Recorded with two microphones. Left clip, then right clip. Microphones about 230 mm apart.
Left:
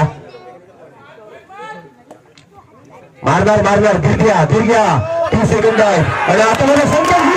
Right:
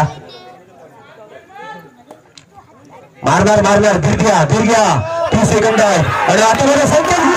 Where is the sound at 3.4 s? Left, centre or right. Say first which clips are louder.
Right 1 dB; right.